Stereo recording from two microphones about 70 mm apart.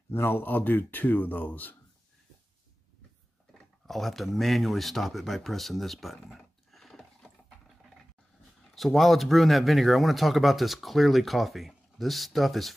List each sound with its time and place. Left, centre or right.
0.1 s speech: left
3.5 s speech: centre
8.7 s speech: centre